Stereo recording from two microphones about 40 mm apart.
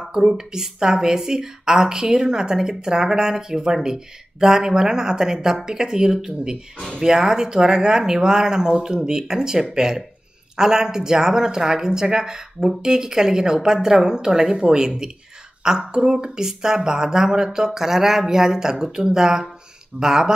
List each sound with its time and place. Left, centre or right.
0.0 s a woman's voice: centre